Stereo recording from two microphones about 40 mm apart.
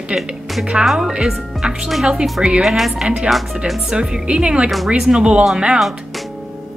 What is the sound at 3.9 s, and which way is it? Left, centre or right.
Speech, right.